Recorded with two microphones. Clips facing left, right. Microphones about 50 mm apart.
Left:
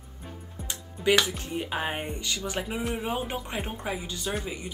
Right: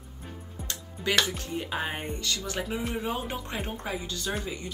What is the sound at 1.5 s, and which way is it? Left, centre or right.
Speech, centre.